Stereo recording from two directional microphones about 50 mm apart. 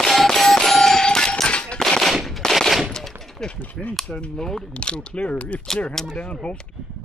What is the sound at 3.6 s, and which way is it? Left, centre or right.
Speech, left.